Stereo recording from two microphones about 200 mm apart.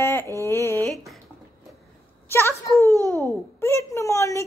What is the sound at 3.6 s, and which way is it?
Speech, 15° left (ahead or behind).